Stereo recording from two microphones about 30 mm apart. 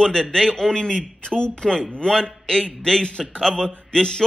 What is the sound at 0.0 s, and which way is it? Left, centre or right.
Speech, left.